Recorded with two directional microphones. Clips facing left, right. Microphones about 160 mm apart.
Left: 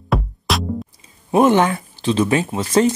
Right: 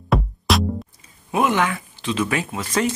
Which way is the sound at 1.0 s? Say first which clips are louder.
Left 7 dB; 35° left (ahead or behind).